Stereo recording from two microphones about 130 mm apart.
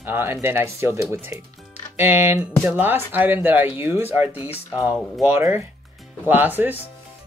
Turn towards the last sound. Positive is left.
turn(degrees=-15)  # may be behind; listen again after turning